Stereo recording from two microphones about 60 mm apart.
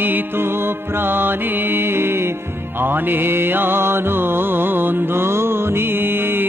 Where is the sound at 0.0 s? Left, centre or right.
Right.